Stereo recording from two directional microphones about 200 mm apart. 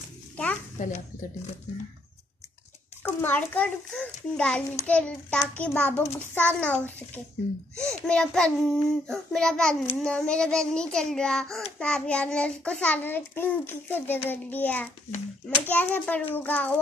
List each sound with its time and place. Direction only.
0.8 s a woman's voice: 40° left (ahead or behind)
3.0 s a child's voice: 10° left (ahead or behind)